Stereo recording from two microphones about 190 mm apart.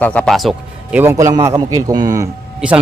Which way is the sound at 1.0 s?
15° right (ahead or behind).